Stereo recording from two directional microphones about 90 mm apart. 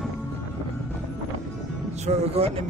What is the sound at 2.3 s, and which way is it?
Music, 90° right.